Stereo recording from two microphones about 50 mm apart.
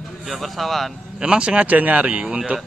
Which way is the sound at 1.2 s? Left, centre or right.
Right.